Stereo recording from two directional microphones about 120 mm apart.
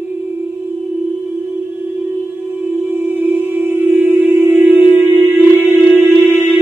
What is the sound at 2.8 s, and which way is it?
Music, 15° right (ahead or behind).